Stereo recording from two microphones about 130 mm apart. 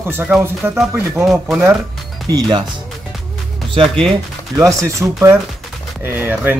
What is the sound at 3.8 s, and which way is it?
Speech, 5° left (ahead or behind).